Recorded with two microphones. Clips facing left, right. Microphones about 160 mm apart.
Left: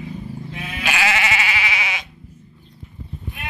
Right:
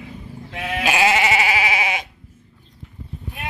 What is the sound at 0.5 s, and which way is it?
Sheep, 90° right.